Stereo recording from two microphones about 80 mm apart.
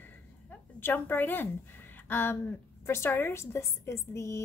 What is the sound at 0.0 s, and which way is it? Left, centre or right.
A woman's voice, left.